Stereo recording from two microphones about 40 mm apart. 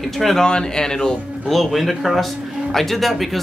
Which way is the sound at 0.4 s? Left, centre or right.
Centre.